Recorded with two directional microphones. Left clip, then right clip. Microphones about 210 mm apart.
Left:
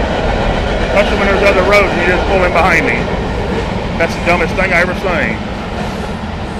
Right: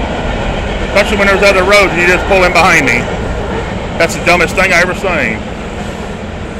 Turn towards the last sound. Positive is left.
turn(degrees=-25)  # may be behind; listen again after turning